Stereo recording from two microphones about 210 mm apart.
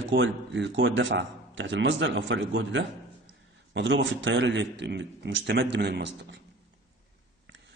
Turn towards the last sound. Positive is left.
turn(degrees=-55)  # may be behind; listen again after turning